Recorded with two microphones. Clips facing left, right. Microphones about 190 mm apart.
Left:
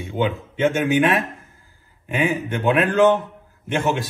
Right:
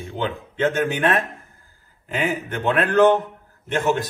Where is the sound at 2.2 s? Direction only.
15° left (ahead or behind).